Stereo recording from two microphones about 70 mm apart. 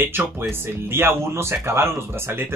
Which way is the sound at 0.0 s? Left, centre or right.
Right.